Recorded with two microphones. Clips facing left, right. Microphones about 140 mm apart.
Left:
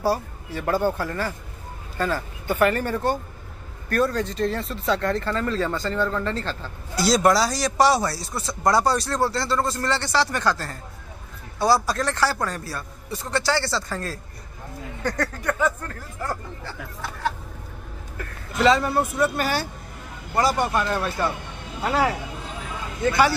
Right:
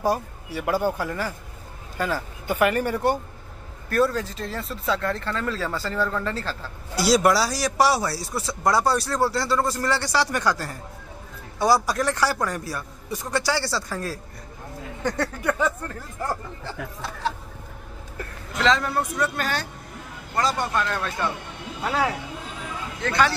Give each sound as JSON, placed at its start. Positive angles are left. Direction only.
{"t": 0.0, "sound": "a man's voice", "side_deg": -15}
{"t": 3.9, "sound": "a man's voice", "side_deg": 0}
{"t": 18.6, "sound": "a man's voice", "side_deg": 10}